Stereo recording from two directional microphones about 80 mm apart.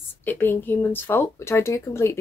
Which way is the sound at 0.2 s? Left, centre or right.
Left.